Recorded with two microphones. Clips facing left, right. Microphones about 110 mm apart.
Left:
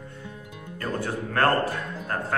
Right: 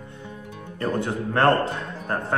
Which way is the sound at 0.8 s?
20° right (ahead or behind).